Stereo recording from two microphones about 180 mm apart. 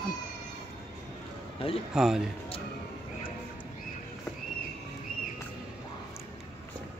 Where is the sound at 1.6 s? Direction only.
30° left (ahead or behind).